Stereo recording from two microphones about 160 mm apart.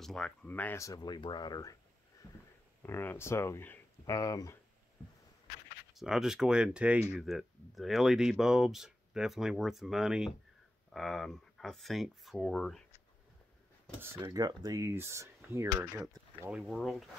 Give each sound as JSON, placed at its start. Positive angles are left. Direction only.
{"t": 0.0, "sound": "speech", "side_deg": 5}
{"t": 2.8, "sound": "speech", "side_deg": 15}
{"t": 5.9, "sound": "speech", "side_deg": -5}
{"t": 14.2, "sound": "speech", "side_deg": -25}
{"t": 16.5, "sound": "speech", "side_deg": 0}